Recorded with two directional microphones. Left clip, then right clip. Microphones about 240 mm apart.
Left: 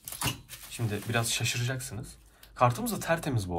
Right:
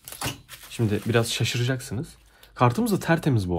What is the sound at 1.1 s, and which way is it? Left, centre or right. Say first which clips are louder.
Speech: right 4 dB; right.